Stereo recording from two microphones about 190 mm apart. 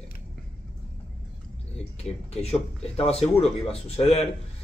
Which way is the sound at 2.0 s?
35° left (ahead or behind).